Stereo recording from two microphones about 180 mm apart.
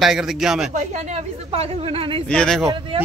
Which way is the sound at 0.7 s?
40° right (ahead or behind).